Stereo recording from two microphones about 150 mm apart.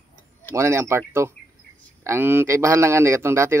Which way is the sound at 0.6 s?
20° right (ahead or behind).